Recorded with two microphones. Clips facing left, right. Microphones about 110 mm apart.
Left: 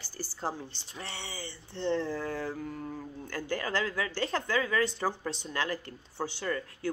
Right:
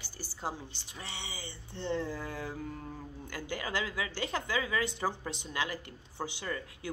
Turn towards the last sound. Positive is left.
turn(degrees=-20)  # may be behind; listen again after turning